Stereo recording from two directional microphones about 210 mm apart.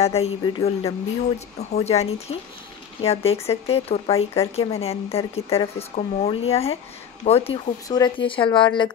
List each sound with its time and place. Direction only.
0.0 s speech: 30° left (ahead or behind)